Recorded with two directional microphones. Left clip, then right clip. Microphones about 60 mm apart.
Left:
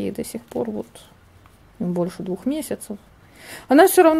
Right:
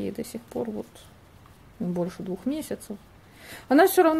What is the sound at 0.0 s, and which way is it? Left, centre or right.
Speech, left.